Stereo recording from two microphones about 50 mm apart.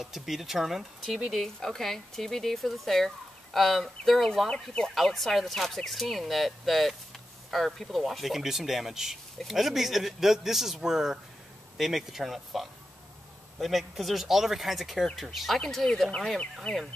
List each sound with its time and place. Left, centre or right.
0.0 s speech: centre
4.5 s speech: centre
4.9 s speech: centre